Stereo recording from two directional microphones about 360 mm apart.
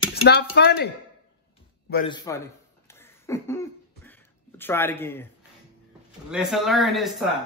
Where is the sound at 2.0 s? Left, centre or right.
Centre.